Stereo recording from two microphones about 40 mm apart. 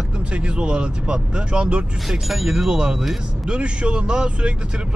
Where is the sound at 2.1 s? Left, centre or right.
Centre.